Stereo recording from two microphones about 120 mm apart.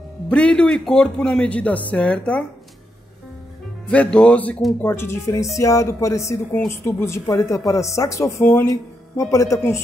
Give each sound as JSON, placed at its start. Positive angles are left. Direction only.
{"t": 0.3, "sound": "a man's voice", "side_deg": 10}
{"t": 3.8, "sound": "a man's voice", "side_deg": 10}